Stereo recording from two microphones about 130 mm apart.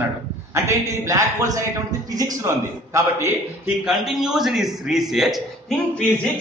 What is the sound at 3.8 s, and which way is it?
A man's voice, centre (ahead or behind).